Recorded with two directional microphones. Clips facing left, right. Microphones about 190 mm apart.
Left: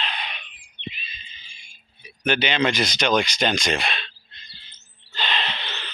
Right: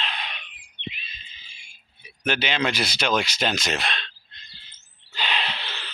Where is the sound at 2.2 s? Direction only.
5° right (ahead or behind).